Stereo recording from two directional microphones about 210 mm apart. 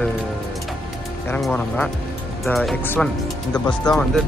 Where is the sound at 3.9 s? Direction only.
20° left (ahead or behind).